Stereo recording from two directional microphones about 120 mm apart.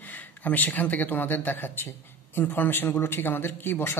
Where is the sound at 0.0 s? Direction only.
15° left (ahead or behind).